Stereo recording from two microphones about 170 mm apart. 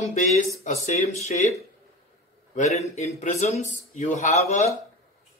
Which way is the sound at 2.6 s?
40° left (ahead or behind).